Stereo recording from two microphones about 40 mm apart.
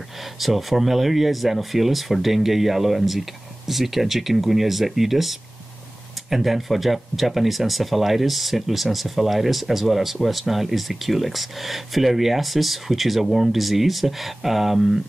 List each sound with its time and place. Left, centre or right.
0.4 s speech: centre